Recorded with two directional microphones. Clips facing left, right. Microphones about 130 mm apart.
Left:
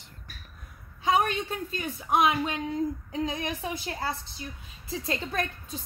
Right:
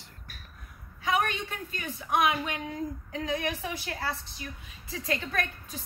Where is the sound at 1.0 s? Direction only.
30° left (ahead or behind).